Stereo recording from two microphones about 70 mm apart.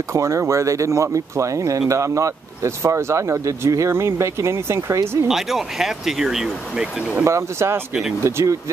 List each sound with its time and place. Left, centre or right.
0.1 s speech: right
5.3 s speech: centre
7.2 s speech: right